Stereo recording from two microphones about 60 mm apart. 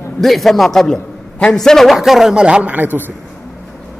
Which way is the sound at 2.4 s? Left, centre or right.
Centre.